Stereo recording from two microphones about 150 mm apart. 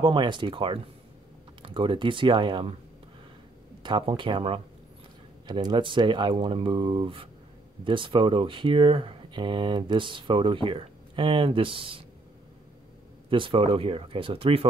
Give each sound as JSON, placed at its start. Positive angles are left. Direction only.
{"t": 0.0, "sound": "speech", "side_deg": -30}
{"t": 3.8, "sound": "speech", "side_deg": -30}
{"t": 13.3, "sound": "speech", "side_deg": -35}